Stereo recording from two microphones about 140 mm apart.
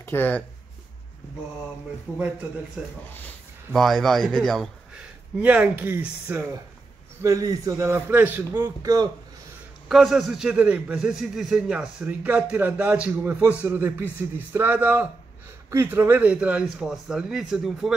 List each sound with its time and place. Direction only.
0.0 s speech: 15° left (ahead or behind)
2.8 s a man's voice: 5° right (ahead or behind)
5.4 s a man's voice: 10° right (ahead or behind)
8.8 s speech: 30° right (ahead or behind)
9.8 s a man's voice: centre (ahead or behind)